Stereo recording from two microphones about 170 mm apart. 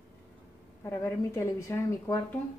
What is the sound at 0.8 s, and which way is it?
A woman's voice, 15° left (ahead or behind).